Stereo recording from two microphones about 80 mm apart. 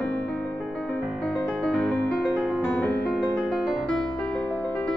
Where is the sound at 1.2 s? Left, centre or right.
Centre.